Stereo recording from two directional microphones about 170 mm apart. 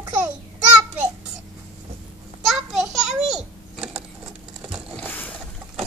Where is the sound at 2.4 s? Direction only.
Centre (ahead or behind).